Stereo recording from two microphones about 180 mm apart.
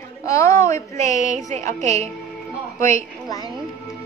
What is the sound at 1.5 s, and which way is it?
Speech, 40° right (ahead or behind).